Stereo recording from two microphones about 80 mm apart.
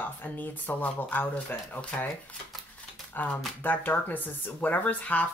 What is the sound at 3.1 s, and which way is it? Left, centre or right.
Speech, left.